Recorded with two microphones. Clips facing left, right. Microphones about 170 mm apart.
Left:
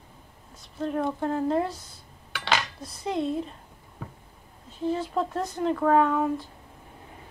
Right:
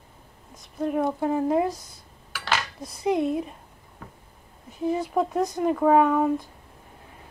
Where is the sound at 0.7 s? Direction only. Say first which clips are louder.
Right 3 dB; 10° right (ahead or behind).